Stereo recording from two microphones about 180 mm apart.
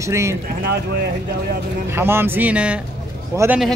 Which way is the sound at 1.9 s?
15° right (ahead or behind).